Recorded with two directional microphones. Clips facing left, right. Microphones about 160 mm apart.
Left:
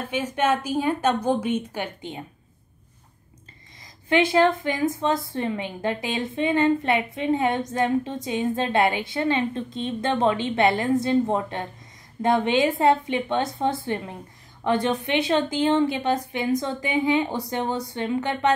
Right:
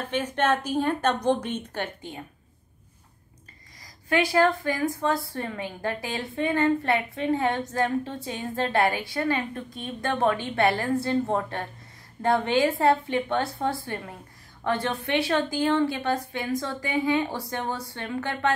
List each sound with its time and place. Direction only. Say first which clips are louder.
0.0 s a woman's voice: left 1 dB; 10° left (ahead or behind)
4.1 s a woman's voice: left 3 dB; 20° left (ahead or behind)